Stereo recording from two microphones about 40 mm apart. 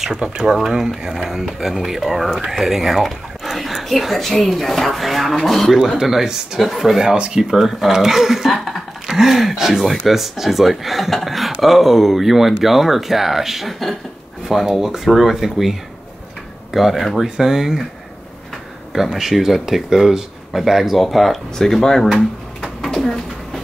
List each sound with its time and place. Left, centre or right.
0.4 s speech: centre
5.9 s speech: centre
6.6 s speech: centre
7.0 s speech: centre
7.5 s speech: centre
18.9 s speech: centre
21.8 s speech: centre
22.8 s a sound: centre